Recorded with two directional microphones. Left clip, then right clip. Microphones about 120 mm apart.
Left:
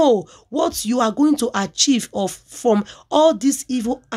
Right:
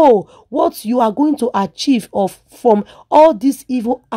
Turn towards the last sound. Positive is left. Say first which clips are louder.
# right 4 dB
turn(degrees=-35)  # may be behind; listen again after turning